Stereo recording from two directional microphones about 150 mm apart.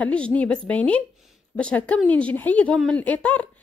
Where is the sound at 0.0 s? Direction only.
10° left (ahead or behind).